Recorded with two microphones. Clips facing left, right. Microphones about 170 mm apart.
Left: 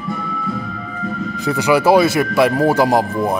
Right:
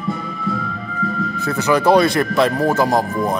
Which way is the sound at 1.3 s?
15° left (ahead or behind).